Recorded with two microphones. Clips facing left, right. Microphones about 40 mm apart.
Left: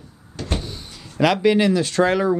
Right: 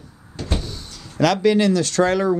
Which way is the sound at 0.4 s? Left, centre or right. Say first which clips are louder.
Even; left.